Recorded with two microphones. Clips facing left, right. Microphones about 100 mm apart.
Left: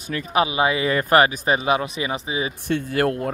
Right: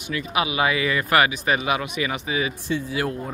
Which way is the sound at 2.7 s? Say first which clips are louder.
Left 7 dB; 55° left (ahead or behind).